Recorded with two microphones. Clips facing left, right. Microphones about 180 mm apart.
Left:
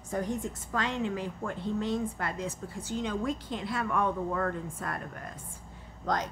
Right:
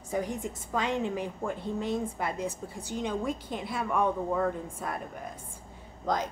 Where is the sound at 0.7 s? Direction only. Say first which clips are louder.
Right 2 dB; 15° right (ahead or behind).